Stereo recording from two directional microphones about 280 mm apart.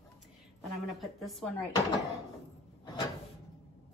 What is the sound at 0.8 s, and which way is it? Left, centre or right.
Speech, centre.